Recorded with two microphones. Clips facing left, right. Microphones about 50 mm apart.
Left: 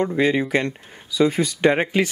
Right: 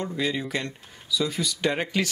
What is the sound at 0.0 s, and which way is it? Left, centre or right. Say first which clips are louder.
Speech: left 9 dB; left.